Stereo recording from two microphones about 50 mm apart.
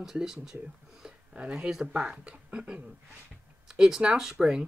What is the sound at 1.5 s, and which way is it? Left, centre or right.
Speech, centre.